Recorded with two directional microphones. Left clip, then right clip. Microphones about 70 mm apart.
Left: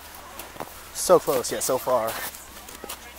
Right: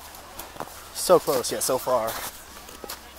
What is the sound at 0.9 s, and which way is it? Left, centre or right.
Speech, centre.